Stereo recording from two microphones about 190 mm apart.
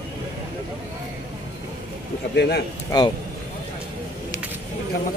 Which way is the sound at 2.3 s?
60° left (ahead or behind).